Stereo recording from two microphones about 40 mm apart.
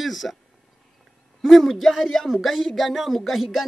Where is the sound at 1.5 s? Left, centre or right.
Centre.